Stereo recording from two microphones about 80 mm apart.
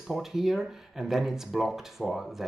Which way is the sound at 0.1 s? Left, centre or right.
Centre.